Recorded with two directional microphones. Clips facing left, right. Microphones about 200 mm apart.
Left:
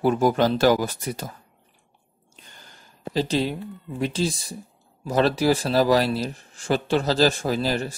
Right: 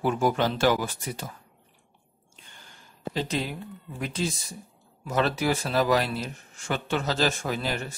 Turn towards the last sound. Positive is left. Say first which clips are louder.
# left 6 dB
turn(degrees=35)  # may be behind; listen again after turning